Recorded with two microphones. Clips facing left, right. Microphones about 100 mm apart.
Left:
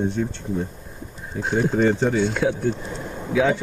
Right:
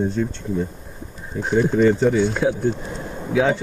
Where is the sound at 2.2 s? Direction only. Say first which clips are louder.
Right 2 dB; 25° right (ahead or behind).